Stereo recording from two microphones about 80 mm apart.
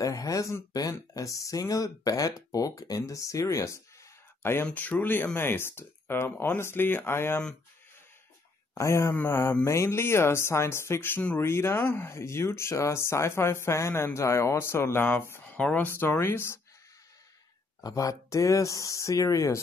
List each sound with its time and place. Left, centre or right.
0.0 s speech: left
4.4 s speech: left
6.3 s speech: centre
8.7 s speech: left
11.8 s speech: left
12.1 s speech: left
15.4 s speech: centre; by 16.5 s left
17.8 s speech: left